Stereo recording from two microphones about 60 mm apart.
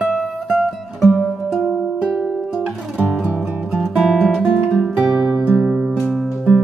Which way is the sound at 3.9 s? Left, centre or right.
Centre.